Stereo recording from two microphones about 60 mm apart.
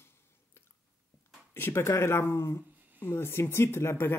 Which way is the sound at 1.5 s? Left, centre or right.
Left.